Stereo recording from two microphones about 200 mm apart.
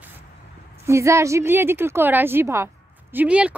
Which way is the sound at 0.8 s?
15° right (ahead or behind).